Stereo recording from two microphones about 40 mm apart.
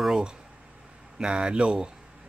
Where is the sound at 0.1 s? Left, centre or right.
Right.